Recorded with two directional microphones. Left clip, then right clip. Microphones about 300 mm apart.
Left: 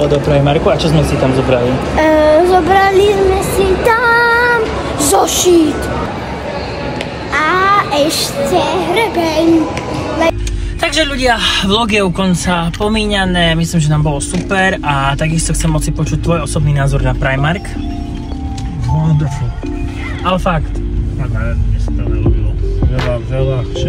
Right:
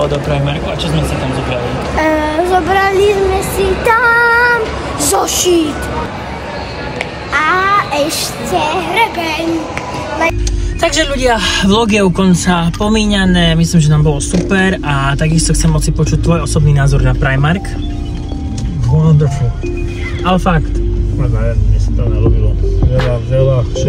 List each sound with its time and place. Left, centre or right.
0.0 s speech: centre
0.7 s speech: left
1.9 s music: centre
7.3 s a child's voice: centre
10.8 s speech: centre
20.2 s speech: centre